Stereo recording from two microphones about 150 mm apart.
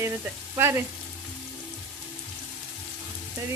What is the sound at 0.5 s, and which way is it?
Speech, 15° right (ahead or behind).